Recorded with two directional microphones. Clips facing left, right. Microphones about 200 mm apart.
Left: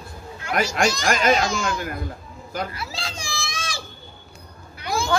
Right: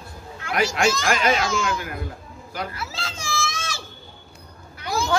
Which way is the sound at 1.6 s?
35° left (ahead or behind).